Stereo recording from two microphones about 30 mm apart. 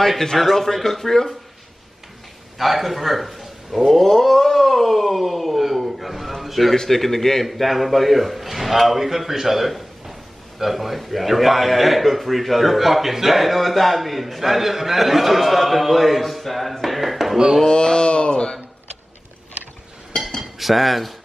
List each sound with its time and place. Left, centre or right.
0.6 s a man's voice: centre
2.6 s a man's voice: centre
6.7 s a man's voice: centre
7.4 s a man's voice: centre
17.6 s a sound: left
20.1 s dishes: centre
20.5 s a man's voice: centre